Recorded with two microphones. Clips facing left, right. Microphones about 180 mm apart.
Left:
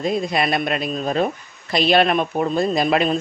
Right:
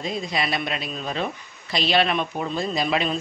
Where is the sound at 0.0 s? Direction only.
55° left (ahead or behind).